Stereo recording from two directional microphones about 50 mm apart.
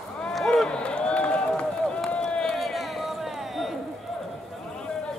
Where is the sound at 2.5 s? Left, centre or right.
Centre.